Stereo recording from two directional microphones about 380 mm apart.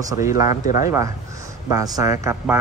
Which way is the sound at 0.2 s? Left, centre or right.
Left.